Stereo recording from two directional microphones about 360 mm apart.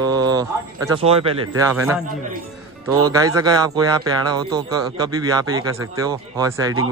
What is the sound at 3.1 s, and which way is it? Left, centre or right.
Speech, centre.